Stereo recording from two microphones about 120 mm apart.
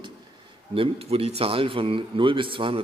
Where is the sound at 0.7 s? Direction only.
55° right (ahead or behind).